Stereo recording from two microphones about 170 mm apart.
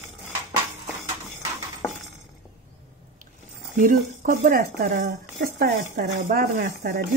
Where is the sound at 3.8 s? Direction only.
50° right (ahead or behind).